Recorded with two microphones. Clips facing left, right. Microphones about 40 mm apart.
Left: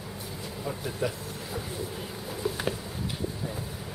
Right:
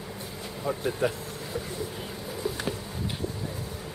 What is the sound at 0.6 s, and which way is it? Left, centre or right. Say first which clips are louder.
Speech: right 5 dB; right.